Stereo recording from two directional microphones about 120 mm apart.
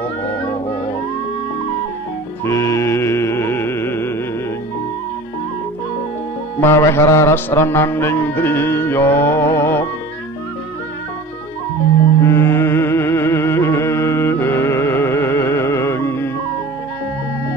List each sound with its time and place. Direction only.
2.4 s music: 25° left (ahead or behind)
6.6 s music: 20° left (ahead or behind)
12.2 s music: 20° left (ahead or behind)